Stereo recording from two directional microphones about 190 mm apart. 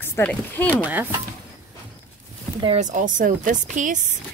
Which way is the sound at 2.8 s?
40° right (ahead or behind).